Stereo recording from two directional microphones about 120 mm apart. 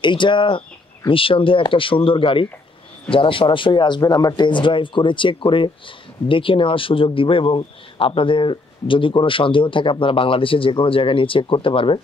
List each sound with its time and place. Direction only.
0.0 s speech: 40° left (ahead or behind)